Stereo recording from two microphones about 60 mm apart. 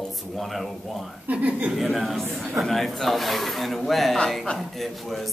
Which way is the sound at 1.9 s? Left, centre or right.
Centre.